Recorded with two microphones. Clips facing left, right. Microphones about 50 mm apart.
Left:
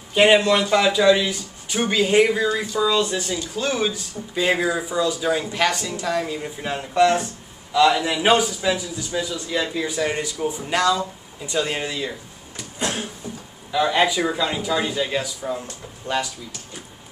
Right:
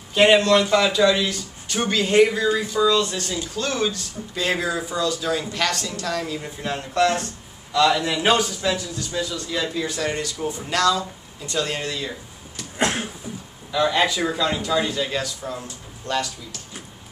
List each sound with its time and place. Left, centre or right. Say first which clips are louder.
0.1 s speech: even; centre
12.7 s a sound: right 3 dB; right
13.7 s speech: left 1 dB; centre